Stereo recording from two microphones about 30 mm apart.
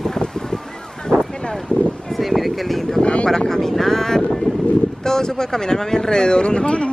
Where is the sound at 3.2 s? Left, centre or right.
Left.